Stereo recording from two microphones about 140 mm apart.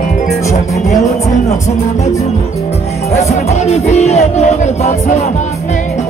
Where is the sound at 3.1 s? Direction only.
55° left (ahead or behind).